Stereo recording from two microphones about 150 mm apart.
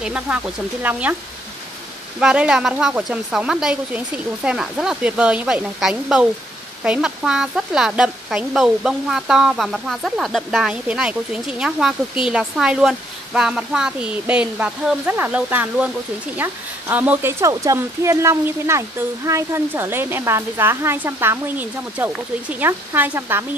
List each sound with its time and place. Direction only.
0.0 s speech: 5° right (ahead or behind)
2.1 s speech: 5° right (ahead or behind)